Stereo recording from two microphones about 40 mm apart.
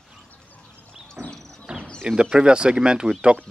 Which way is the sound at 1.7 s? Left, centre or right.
Right.